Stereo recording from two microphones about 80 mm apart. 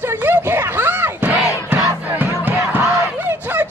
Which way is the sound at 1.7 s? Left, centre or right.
Right.